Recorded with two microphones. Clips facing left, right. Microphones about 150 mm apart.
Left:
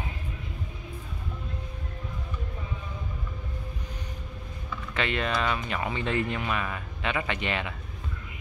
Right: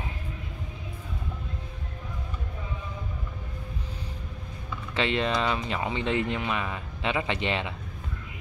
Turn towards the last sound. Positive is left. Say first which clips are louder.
# right 2 dB
turn(degrees=-25)  # may be behind; listen again after turning